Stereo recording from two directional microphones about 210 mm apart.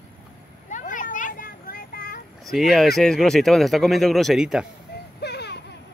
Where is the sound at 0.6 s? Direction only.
35° left (ahead or behind).